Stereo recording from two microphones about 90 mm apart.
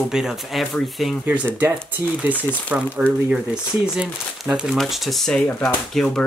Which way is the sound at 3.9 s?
5° right (ahead or behind).